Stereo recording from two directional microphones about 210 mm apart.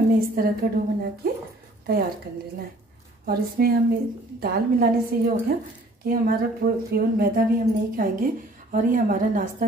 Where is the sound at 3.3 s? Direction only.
45° right (ahead or behind).